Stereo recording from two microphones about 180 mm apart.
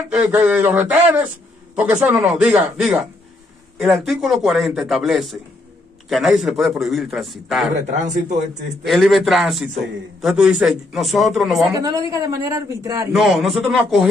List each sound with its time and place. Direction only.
0.2 s a man's voice: 5° right (ahead or behind)
7.7 s a man's voice: 40° right (ahead or behind)
8.8 s a man's voice: centre (ahead or behind)
11.7 s speech: 20° right (ahead or behind)
13.1 s a man's voice: centre (ahead or behind)